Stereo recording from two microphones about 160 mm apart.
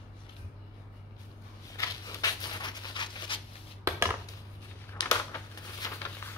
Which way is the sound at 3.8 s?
15° right (ahead or behind).